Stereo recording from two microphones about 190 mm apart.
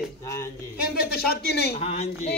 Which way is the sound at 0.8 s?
55° left (ahead or behind).